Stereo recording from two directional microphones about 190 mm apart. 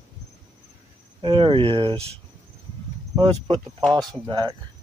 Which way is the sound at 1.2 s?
25° right (ahead or behind).